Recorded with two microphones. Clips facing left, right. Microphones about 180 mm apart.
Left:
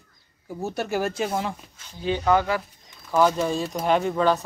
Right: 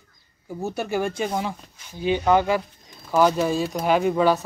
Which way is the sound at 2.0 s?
20° right (ahead or behind).